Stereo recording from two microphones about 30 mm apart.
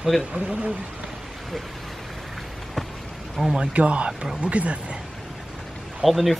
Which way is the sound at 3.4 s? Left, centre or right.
Centre.